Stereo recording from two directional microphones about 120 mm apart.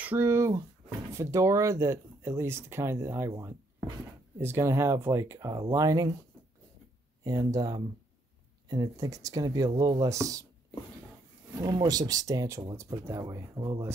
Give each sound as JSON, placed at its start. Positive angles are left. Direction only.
{"t": 0.0, "sound": "speech", "side_deg": -20}
{"t": 7.2, "sound": "speech", "side_deg": -30}
{"t": 11.6, "sound": "speech", "side_deg": -35}